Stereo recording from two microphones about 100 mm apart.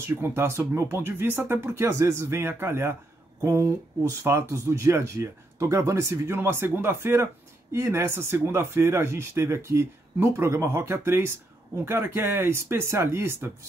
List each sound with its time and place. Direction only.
0.0 s a man's voice: 25° right (ahead or behind)
1.9 s a man's voice: 35° right (ahead or behind)